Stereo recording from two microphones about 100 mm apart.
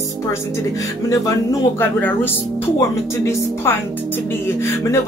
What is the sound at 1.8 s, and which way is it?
Speech, 20° left (ahead or behind).